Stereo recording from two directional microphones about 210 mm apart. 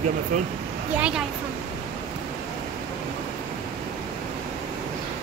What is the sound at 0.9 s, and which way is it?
Speech, 5° right (ahead or behind).